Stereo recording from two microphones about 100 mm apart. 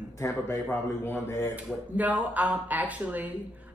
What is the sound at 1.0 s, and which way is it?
Speech, 25° left (ahead or behind).